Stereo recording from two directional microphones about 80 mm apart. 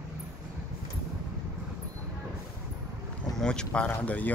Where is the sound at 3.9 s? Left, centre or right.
Centre.